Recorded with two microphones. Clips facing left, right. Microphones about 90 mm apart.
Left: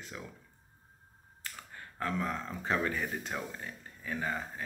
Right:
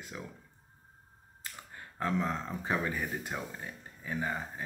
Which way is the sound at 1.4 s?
20° right (ahead or behind).